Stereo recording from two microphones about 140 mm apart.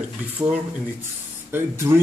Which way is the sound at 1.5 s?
15° right (ahead or behind).